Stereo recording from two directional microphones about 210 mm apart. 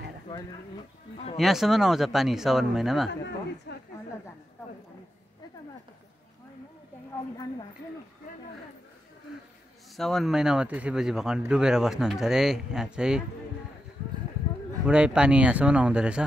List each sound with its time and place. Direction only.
1.1 s speech: 30° left (ahead or behind)
1.4 s speech: centre (ahead or behind)
3.7 s a sound: 50° left (ahead or behind)
9.9 s speech: centre (ahead or behind)
14.9 s speech: 5° right (ahead or behind)